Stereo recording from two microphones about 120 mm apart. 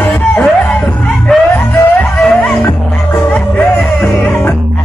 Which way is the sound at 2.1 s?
5° left (ahead or behind).